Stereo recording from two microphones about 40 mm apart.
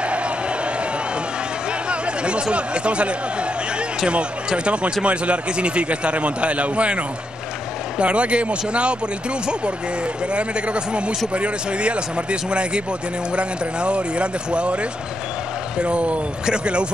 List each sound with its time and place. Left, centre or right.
1.9 s a sound: right
2.5 s a man's voice: right
10.3 s speech: right